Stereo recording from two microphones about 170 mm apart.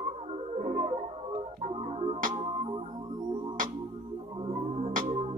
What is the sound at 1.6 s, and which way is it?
Music, 35° right (ahead or behind).